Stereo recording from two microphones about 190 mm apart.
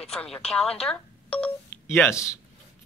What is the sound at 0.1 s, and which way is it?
Speech, 5° left (ahead or behind).